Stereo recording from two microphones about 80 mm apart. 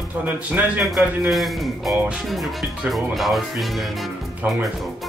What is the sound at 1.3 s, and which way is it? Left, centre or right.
Speech, centre.